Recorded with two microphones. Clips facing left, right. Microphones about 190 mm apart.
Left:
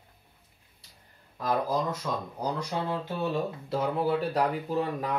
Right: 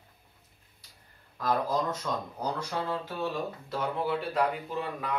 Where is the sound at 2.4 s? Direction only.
15° left (ahead or behind).